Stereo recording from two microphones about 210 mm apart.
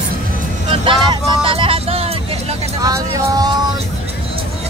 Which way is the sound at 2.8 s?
15° right (ahead or behind).